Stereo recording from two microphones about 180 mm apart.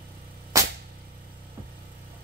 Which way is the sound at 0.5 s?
15° right (ahead or behind).